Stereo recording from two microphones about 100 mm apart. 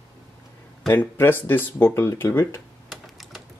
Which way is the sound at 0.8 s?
25° left (ahead or behind).